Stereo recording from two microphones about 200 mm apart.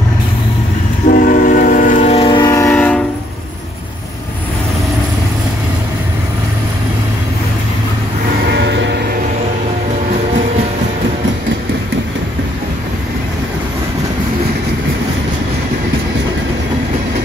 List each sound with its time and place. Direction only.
1.1 s train: 45° left (ahead or behind); by 3.0 s 10° left (ahead or behind)